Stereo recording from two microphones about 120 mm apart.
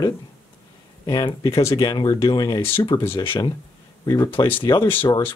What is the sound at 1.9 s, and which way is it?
Speech, 40° left (ahead or behind).